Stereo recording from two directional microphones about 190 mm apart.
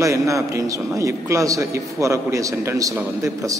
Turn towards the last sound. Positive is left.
turn(degrees=-15)  # may be behind; listen again after turning